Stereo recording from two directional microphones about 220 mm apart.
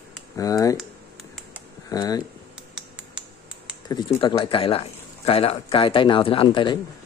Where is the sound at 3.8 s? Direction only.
20° left (ahead or behind).